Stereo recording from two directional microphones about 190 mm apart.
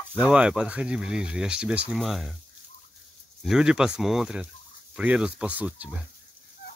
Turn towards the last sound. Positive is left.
turn(degrees=-10)  # may be behind; listen again after turning